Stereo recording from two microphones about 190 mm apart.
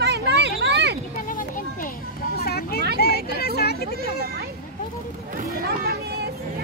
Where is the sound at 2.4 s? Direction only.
55° left (ahead or behind).